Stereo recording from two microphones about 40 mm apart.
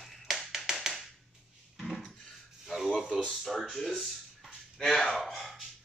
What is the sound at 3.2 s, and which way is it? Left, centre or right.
Speech, centre.